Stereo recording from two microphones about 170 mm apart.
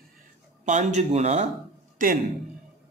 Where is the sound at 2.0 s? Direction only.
55° right (ahead or behind).